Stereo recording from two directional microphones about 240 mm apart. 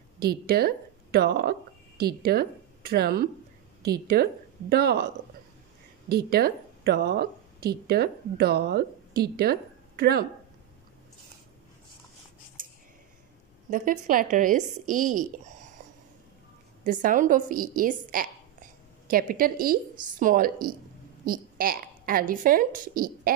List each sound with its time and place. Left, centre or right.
0.2 s a woman's voice: right
6.0 s a woman's voice: right
13.7 s a woman's voice: right
16.8 s a woman's voice: right